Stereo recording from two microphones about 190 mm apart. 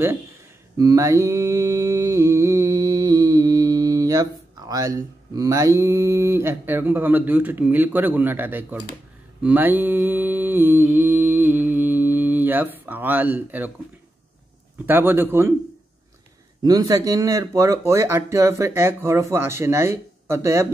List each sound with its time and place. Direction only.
0.7 s mantra: 15° right (ahead or behind)
14.9 s speech: 10° right (ahead or behind)
16.6 s speech: 20° right (ahead or behind)